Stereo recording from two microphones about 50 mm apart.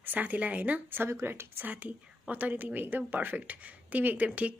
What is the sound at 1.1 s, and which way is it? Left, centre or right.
Speech, right.